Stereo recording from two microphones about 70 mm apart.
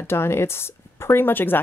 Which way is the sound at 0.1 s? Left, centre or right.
Left.